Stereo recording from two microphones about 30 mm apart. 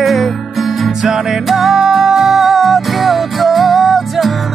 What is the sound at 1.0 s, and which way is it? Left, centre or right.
Music, centre.